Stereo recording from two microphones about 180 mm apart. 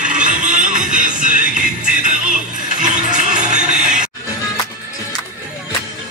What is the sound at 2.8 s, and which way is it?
Music, 45° right (ahead or behind).